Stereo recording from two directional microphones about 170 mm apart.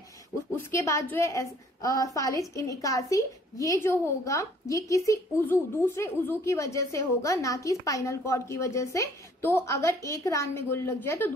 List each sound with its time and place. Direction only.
0.6 s a woman's voice: 15° left (ahead or behind)